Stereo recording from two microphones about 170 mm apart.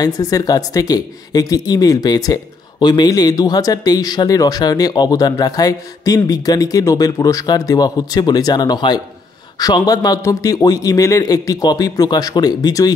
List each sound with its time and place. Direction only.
0.0 s speech: 20° left (ahead or behind)